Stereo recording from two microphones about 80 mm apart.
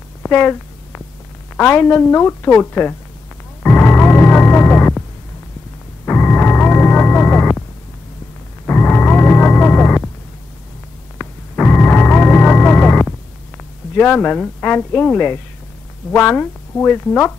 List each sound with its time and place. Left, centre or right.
0.2 s a sound: left
1.6 s a woman's voice: left
3.6 s music: left
6.0 s music: left
8.6 s music: left
11.1 s music: centre
13.9 s a woman's voice: centre